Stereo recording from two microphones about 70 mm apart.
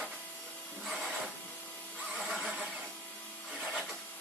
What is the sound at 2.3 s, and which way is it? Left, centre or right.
Vehicle, centre.